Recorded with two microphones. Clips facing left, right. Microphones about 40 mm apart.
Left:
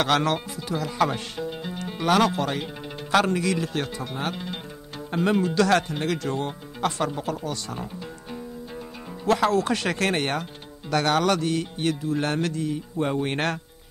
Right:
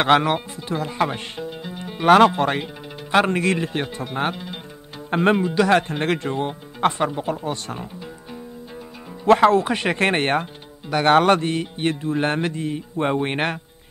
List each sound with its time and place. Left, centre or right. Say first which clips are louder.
0.0 s music: right 5 dB; right
1.5 s music: even; centre
2.0 s speech: right 8 dB; right
3.1 s music: right 3 dB; right
5.1 s speech: right 5 dB; right
5.4 s music: right 3 dB; centre
5.9 s speech: right 4 dB; right
6.2 s music: right 3 dB; right
6.8 s speech: right 6 dB; right
7.2 s music: right 4 dB; right
9.2 s speech: right 7 dB; right
11.1 s music: right 8 dB; right